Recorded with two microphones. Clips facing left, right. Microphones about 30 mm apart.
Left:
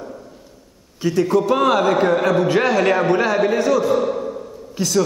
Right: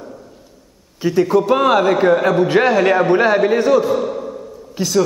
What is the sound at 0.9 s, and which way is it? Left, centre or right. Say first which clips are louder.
A man's voice: right 3 dB; centre.